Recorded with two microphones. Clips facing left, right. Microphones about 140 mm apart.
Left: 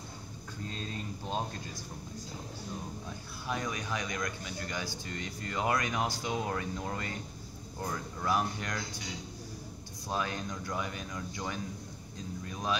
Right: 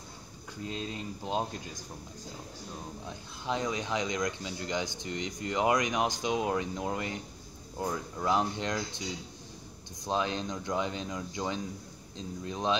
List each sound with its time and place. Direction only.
0.7 s speech: 20° right (ahead or behind)
3.1 s speech: 20° right (ahead or behind)